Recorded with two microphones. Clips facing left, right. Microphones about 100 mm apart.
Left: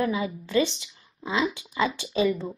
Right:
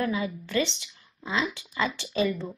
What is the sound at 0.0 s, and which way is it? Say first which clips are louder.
Speech: left 2 dB; 20° left (ahead or behind).